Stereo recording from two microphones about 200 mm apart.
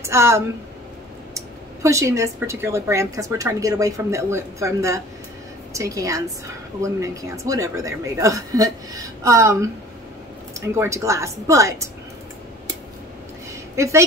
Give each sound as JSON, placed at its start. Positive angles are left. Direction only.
{"t": 0.0, "sound": "speech", "side_deg": -15}
{"t": 13.8, "sound": "speech", "side_deg": -15}